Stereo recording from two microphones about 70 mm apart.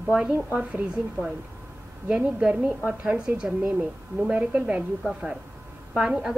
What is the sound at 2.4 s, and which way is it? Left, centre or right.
A woman's voice, centre.